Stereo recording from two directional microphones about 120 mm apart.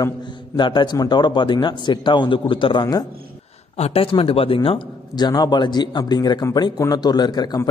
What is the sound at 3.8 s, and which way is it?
Speech, 55° left (ahead or behind).